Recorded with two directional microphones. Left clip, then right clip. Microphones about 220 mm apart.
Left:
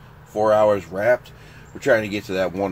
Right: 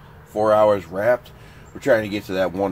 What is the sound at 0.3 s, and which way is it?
Speech, 5° right (ahead or behind).